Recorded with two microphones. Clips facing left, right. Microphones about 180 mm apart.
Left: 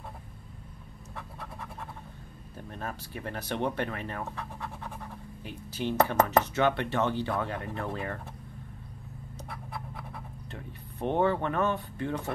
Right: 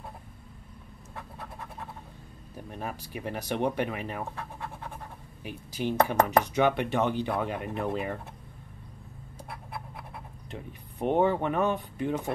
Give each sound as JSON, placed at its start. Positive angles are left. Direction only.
{"t": 2.5, "sound": "speech", "side_deg": -15}
{"t": 10.5, "sound": "speech", "side_deg": -15}